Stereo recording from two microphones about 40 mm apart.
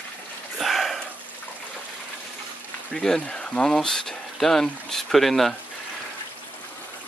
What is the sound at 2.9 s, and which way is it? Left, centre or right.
Speech, centre.